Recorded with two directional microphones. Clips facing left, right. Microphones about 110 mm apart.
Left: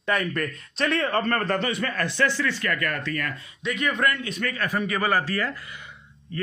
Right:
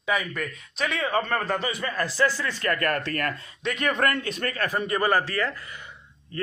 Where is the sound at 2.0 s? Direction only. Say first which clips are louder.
Right 1 dB; 35° right (ahead or behind).